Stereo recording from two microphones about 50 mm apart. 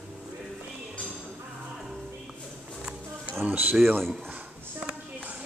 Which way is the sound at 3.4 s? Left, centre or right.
Right.